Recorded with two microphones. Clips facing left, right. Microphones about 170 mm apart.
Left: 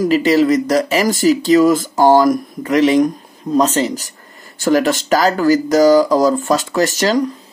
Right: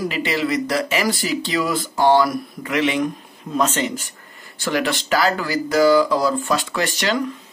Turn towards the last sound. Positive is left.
turn(degrees=40)  # may be behind; listen again after turning